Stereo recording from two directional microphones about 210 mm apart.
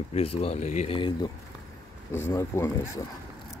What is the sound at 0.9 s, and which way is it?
Speech, 20° left (ahead or behind).